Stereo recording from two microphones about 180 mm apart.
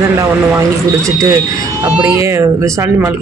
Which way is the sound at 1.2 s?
15° right (ahead or behind).